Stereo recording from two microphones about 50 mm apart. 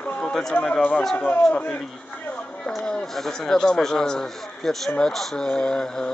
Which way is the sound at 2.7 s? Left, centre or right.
Centre.